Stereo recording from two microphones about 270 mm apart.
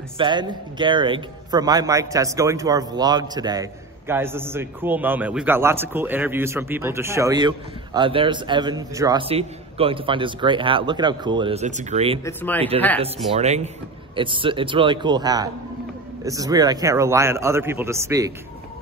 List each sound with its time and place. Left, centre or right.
0.2 s a man's voice: centre
12.3 s speech: centre
13.3 s a man's voice: right